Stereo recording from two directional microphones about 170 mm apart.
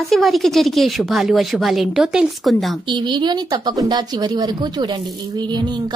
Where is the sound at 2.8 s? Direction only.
25° right (ahead or behind).